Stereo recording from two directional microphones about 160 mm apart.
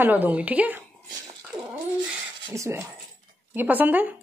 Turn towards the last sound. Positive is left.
turn(degrees=-10)  # may be behind; listen again after turning